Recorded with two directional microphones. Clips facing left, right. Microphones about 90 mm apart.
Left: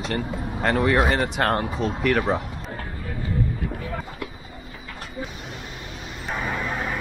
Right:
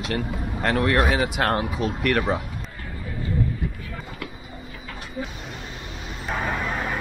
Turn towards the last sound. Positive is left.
turn(degrees=-15)  # may be behind; listen again after turning